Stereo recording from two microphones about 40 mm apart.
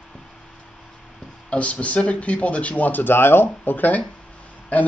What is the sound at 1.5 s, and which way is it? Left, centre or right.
Speech, left.